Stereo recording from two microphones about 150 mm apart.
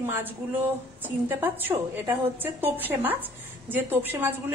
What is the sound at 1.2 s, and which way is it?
A woman's voice, 15° right (ahead or behind).